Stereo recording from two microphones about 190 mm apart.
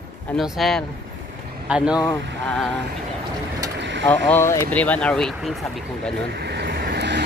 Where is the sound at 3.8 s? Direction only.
70° right (ahead or behind).